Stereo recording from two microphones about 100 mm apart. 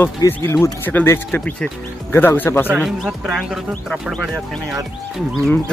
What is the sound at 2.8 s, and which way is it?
Speech, 5° right (ahead or behind).